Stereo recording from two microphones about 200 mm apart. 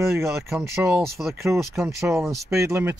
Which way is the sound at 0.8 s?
Centre (ahead or behind).